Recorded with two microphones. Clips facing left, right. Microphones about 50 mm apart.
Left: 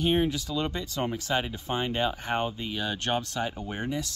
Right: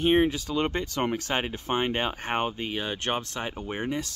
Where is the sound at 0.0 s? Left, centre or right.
Right.